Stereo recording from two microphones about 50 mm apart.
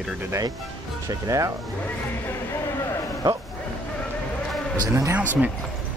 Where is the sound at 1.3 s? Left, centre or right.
Right.